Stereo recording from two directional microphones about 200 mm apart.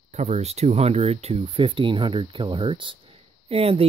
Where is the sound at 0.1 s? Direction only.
30° right (ahead or behind).